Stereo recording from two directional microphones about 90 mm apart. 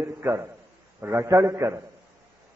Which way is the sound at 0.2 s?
25° right (ahead or behind).